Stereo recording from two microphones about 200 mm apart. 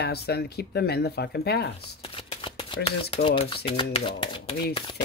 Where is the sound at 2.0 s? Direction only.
25° left (ahead or behind).